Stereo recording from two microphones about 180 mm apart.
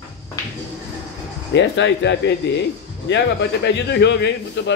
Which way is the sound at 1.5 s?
75° left (ahead or behind).